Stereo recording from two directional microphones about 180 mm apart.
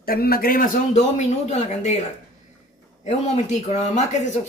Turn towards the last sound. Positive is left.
turn(degrees=40)  # may be behind; listen again after turning